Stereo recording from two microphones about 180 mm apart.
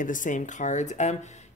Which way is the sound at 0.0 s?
45° left (ahead or behind).